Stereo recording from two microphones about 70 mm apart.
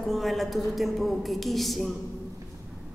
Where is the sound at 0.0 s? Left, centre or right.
Centre.